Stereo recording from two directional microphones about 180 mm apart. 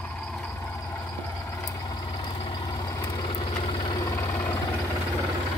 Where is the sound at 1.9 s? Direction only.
25° left (ahead or behind).